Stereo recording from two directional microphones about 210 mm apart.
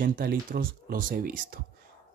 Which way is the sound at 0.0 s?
45° right (ahead or behind).